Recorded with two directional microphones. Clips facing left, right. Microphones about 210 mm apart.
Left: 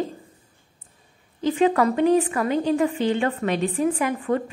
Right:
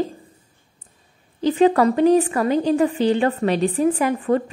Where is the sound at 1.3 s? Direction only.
35° right (ahead or behind).